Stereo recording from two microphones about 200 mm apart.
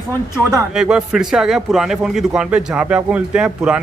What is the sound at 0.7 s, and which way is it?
A man's voice, 5° right (ahead or behind).